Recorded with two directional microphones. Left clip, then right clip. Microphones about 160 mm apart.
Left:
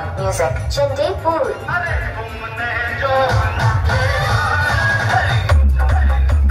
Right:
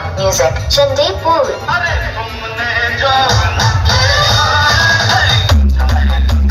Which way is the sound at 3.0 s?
60° left (ahead or behind).